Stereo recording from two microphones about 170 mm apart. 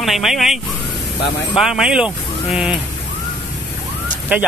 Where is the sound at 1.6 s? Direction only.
5° right (ahead or behind).